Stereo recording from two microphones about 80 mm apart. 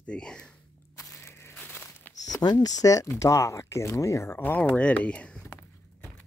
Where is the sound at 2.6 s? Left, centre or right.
Left; by 5.5 s centre.